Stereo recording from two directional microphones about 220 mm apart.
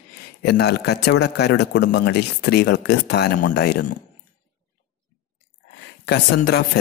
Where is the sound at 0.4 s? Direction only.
50° left (ahead or behind).